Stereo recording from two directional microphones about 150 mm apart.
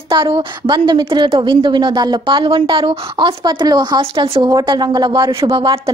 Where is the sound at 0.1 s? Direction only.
35° right (ahead or behind).